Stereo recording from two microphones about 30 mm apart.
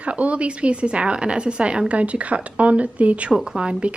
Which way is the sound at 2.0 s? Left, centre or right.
Right.